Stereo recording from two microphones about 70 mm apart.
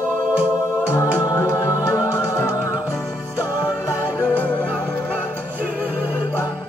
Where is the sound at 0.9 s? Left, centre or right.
Left.